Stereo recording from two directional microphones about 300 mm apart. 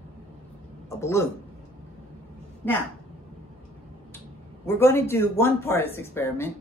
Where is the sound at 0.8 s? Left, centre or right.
Centre.